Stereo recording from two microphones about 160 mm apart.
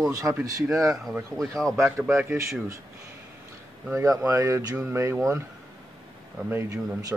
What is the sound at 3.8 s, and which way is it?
Speech, 20° right (ahead or behind).